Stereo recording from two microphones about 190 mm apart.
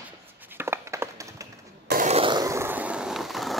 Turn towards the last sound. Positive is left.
turn(degrees=0)  # may be behind; listen again after turning